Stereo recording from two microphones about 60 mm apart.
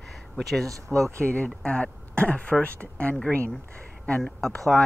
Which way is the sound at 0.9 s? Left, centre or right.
Centre.